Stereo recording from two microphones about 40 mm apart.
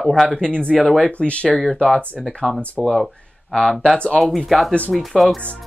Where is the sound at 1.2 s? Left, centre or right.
Left.